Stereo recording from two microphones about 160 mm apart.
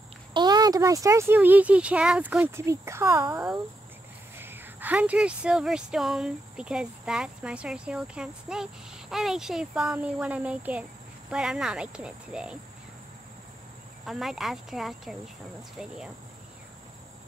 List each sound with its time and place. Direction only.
0.3 s speech: 25° right (ahead or behind); by 12.5 s 5° right (ahead or behind)
14.0 s speech: centre (ahead or behind)